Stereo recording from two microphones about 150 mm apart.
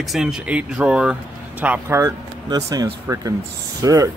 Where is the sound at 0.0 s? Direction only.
5° right (ahead or behind); by 4.1 s 20° right (ahead or behind).